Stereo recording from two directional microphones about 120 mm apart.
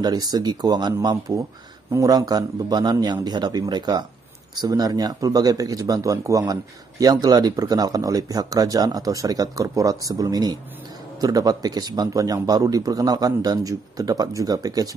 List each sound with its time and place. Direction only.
0.0 s speech: 35° right (ahead or behind)